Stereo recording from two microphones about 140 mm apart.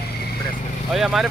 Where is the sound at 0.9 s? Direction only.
Centre (ahead or behind).